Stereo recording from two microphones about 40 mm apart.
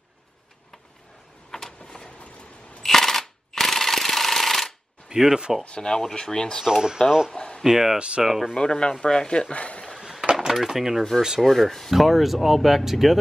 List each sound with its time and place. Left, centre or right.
1.8 s a sound: left
2.8 s a sound: centre
5.1 s speech: centre
5.7 s speech: centre
6.6 s speech: centre
7.3 s a sound: left
7.6 s speech: centre
8.5 s speech: left
9.5 s speech: left
9.9 s a sound: centre
10.3 s speech: centre
11.4 s speech: centre